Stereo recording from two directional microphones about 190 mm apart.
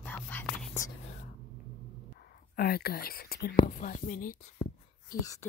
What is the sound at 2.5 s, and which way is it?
Speech, 55° left (ahead or behind).